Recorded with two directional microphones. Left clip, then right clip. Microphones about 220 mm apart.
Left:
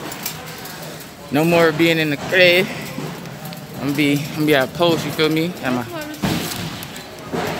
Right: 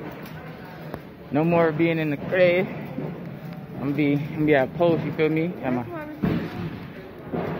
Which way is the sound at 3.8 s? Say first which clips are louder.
Left 5 dB; 25° left (ahead or behind).